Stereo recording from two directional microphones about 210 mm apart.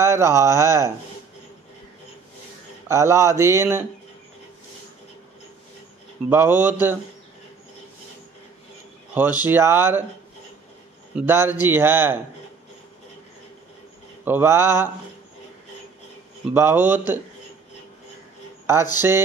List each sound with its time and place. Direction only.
0.0 s speech: 15° right (ahead or behind)
2.9 s speech: 15° right (ahead or behind)
6.3 s speech: 10° right (ahead or behind)
9.1 s speech: 10° right (ahead or behind)
11.1 s speech: 10° right (ahead or behind)
14.2 s speech: 10° right (ahead or behind)
16.5 s speech: 10° right (ahead or behind)
18.9 s speech: 10° right (ahead or behind)